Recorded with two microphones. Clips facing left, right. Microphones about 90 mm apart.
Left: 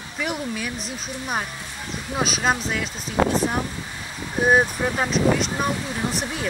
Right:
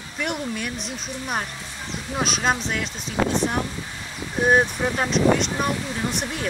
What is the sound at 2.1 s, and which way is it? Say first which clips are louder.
Speech: left 1 dB; centre (ahead or behind).